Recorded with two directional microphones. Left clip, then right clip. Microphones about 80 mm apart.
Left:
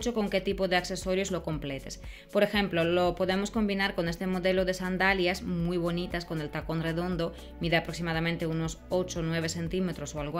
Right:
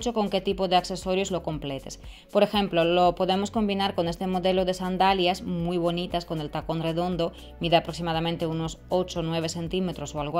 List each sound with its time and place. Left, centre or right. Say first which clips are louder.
0.2 s speech: right 3 dB; right
2.3 s speech: right 4 dB; right